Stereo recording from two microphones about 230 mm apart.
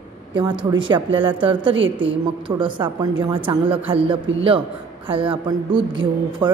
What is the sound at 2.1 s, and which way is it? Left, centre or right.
A woman's voice, right.